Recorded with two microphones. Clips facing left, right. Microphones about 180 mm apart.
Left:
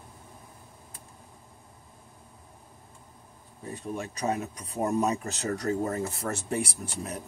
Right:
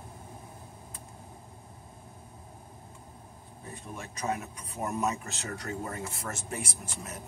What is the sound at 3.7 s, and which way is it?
Speech, 35° left (ahead or behind).